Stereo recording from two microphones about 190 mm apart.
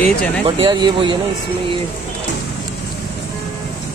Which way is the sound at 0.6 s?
25° right (ahead or behind).